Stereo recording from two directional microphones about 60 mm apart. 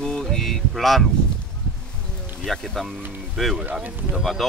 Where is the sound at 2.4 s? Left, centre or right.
Centre.